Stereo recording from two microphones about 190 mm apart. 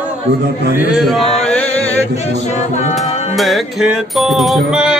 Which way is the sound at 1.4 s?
5° left (ahead or behind).